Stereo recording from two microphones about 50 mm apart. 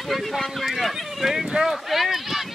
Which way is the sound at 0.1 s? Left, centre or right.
Centre.